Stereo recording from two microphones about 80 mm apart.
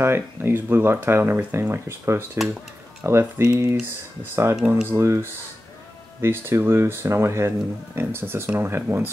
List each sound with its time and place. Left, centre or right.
0.0 s speech: right